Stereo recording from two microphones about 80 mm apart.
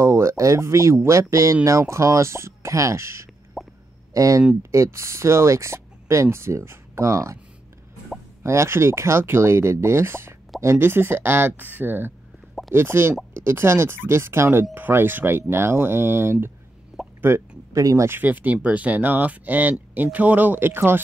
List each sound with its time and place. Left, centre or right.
0.0 s speech: right
3.6 s a sound: centre
4.1 s speech: right
8.4 s speech: right
16.9 s plop: centre
17.7 s speech: right
18.0 s speech: right